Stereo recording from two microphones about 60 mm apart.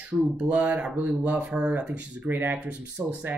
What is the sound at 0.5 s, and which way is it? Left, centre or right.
Speech, right.